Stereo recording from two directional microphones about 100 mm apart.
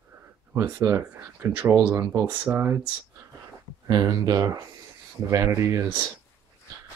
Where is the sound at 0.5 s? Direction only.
25° right (ahead or behind).